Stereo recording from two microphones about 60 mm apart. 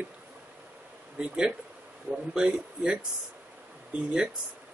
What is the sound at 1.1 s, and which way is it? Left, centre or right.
Speech, centre.